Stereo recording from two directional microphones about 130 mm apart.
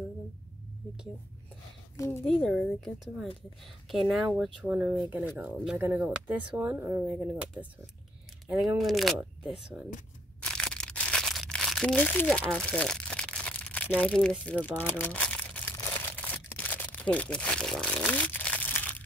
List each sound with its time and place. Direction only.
2.0 s speech: 20° left (ahead or behind)
2.2 s speech: 5° left (ahead or behind)
4.4 s speech: 10° right (ahead or behind)
8.5 s speech: centre (ahead or behind)
10.4 s a sound: 5° left (ahead or behind)